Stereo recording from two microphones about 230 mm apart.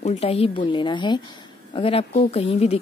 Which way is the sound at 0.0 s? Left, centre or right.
Left.